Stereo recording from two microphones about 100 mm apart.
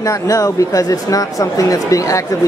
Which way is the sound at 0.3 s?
35° left (ahead or behind).